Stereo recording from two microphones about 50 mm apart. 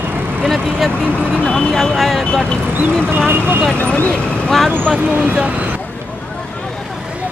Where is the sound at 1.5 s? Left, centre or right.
Centre.